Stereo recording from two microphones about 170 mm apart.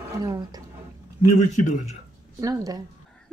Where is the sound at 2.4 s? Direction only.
20° right (ahead or behind).